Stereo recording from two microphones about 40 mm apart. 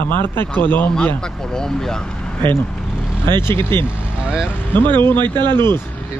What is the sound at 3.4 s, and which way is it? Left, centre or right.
Speech, left.